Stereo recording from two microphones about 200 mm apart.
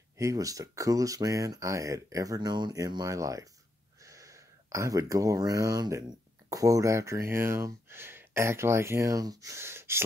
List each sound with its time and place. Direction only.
0.2 s speech: 15° right (ahead or behind)